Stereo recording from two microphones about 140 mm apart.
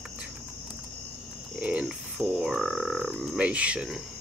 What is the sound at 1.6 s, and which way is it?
Frog, 10° right (ahead or behind).